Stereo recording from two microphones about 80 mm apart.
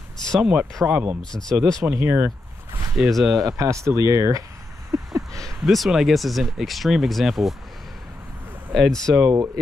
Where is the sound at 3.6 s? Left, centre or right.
Right.